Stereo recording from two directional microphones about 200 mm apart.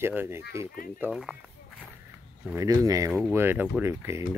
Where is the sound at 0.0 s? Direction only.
10° right (ahead or behind).